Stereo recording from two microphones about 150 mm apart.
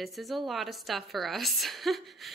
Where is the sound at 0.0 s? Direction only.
Centre (ahead or behind).